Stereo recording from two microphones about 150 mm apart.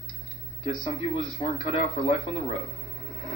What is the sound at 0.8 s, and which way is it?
Speech, 40° left (ahead or behind).